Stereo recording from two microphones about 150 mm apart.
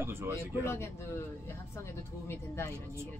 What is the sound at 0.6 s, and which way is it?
Speech, 20° left (ahead or behind).